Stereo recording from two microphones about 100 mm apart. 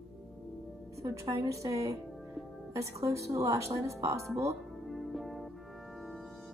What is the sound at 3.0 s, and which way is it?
A woman's voice, 35° right (ahead or behind).